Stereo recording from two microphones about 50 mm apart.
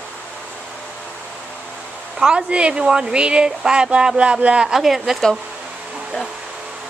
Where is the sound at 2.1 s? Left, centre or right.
Centre.